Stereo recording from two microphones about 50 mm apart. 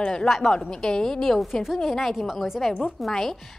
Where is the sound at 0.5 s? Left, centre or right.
Centre.